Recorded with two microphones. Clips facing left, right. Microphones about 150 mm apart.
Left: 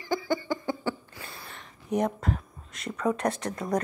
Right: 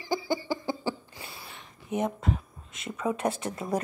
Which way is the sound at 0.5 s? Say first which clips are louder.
Left 1 dB; 30° right (ahead or behind).